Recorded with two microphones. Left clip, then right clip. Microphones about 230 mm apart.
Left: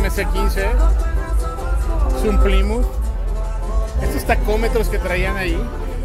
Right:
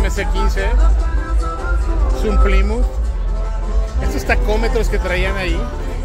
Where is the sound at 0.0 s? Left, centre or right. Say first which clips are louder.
Even; centre.